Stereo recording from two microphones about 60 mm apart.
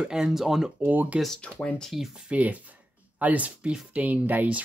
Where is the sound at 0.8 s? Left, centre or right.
Right.